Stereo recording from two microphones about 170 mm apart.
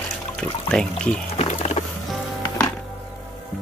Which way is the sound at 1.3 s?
40° left (ahead or behind).